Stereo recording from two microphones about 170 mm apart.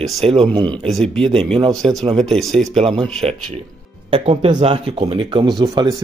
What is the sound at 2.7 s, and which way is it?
Speech, 30° right (ahead or behind).